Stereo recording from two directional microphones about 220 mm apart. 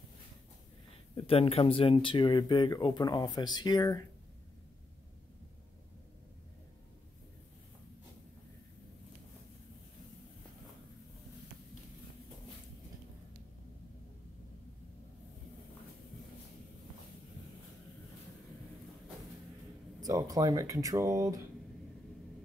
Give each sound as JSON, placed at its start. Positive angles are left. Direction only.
{"t": 1.1, "sound": "speech", "side_deg": 25}
{"t": 20.0, "sound": "speech", "side_deg": -15}